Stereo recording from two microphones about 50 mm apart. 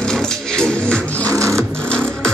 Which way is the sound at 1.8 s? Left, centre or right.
Centre.